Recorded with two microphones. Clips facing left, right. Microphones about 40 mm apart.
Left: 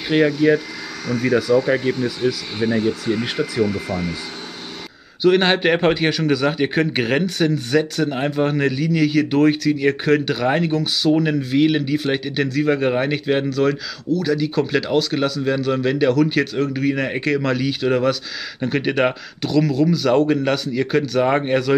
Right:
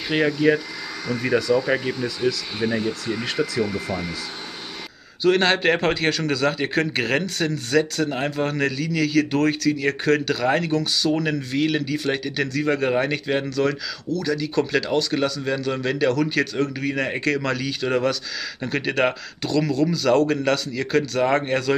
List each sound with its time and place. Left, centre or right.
0.3 s speech: centre
2.0 s speech: centre
3.6 s speech: centre
5.2 s speech: centre